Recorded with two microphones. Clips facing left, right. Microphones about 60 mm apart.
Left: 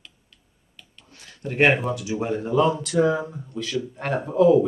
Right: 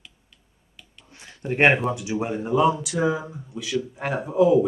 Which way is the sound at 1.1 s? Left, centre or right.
Right.